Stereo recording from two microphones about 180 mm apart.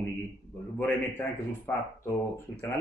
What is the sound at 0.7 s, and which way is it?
A man's voice, 10° left (ahead or behind).